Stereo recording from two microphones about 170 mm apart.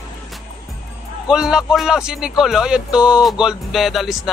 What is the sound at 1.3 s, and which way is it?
Speech, 5° right (ahead or behind).